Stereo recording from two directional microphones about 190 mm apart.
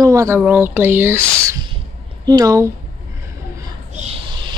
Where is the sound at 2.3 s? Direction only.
20° right (ahead or behind).